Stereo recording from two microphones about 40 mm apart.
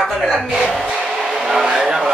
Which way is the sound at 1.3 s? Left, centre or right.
Centre.